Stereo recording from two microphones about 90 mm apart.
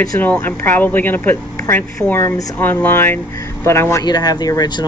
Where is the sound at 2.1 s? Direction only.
35° left (ahead or behind).